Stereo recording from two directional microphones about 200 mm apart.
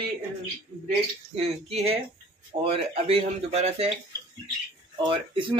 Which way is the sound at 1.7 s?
30° right (ahead or behind).